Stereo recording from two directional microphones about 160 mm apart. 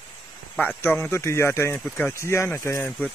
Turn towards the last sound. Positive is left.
turn(degrees=15)  # may be behind; listen again after turning